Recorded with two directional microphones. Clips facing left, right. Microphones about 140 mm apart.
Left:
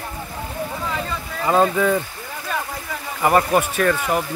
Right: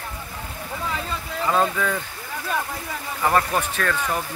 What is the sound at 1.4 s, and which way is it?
Speech, 20° left (ahead or behind).